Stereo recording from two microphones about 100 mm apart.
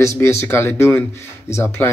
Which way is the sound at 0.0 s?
30° left (ahead or behind).